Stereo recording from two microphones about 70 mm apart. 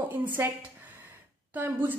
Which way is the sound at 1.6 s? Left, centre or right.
Right.